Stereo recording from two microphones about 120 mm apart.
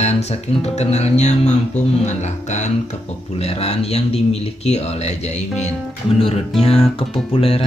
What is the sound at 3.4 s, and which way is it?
Speech, 60° left (ahead or behind).